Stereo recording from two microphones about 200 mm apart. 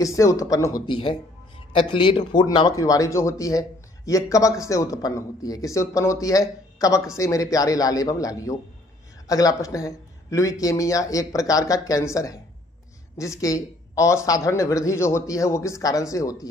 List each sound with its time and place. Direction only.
0.0 s speech: 15° left (ahead or behind)
13.4 s speech: 15° left (ahead or behind)